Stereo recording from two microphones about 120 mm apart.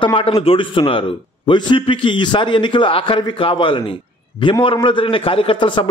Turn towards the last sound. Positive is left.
turn(degrees=40)  # may be behind; listen again after turning